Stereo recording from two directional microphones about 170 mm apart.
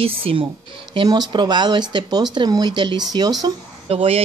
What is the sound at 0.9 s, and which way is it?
Speech, 25° right (ahead or behind).